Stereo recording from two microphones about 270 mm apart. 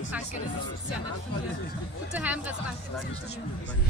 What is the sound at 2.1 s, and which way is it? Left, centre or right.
Speech, centre.